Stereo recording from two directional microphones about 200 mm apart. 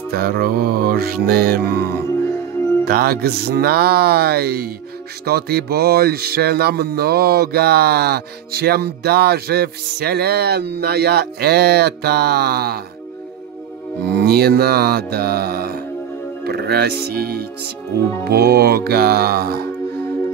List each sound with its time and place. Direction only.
0.1 s music: 50° right (ahead or behind)
14.1 s music: 50° right (ahead or behind)